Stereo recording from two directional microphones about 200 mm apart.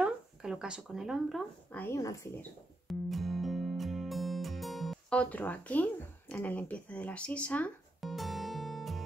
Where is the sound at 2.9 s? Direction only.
Centre (ahead or behind).